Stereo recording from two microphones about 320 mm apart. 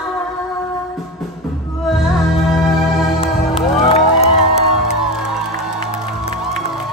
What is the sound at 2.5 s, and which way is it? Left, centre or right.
Music, centre.